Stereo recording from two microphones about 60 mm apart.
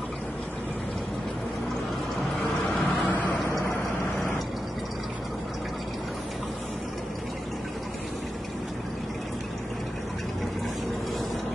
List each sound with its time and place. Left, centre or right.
2.8 s vehicle: left